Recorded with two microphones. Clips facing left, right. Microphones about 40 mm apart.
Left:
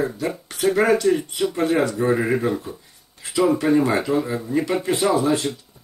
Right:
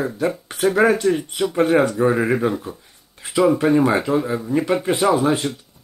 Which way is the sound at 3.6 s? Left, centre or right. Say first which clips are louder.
Right 2 dB; centre.